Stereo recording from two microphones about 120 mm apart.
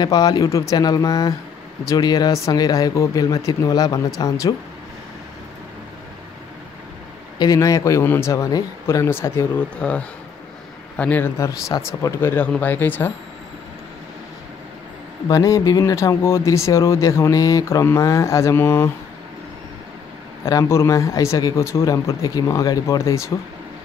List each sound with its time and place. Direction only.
0.0 s speech: 30° left (ahead or behind)
7.3 s speech: 30° left (ahead or behind)
9.8 s speech: 10° left (ahead or behind)
15.2 s speech: 30° left (ahead or behind)
20.4 s speech: 25° left (ahead or behind)